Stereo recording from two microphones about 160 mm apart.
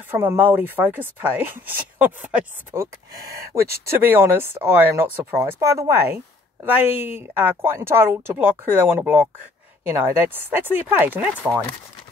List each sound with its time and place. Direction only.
0.1 s speech: 15° right (ahead or behind)